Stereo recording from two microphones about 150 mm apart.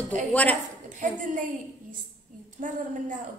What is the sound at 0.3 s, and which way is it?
Speech, 10° left (ahead or behind).